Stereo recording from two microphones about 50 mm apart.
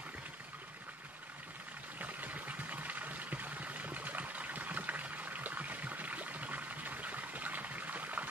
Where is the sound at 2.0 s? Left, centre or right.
Right.